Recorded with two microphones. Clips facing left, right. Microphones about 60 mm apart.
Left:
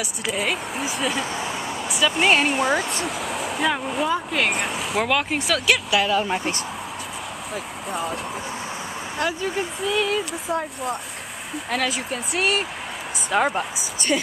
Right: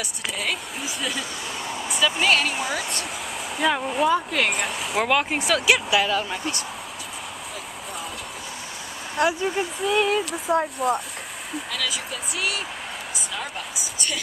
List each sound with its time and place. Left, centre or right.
0.0 s speech: centre
2.2 s speech: left
2.9 s speech: centre
9.2 s speech: centre
9.8 s speech: centre
11.7 s speech: left